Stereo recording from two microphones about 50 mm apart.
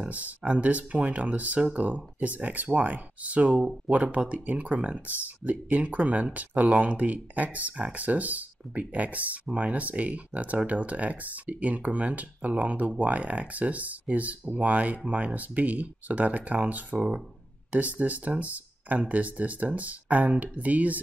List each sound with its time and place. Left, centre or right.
0.0 s speech: right